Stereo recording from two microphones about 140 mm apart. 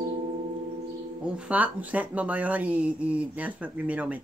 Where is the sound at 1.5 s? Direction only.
10° right (ahead or behind).